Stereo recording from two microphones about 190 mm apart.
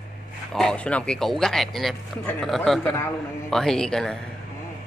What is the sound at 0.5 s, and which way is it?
Speech, 5° left (ahead or behind).